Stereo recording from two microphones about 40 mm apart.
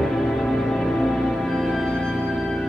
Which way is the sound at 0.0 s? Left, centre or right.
Centre.